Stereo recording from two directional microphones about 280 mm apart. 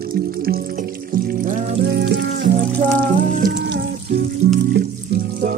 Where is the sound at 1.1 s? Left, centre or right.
Right.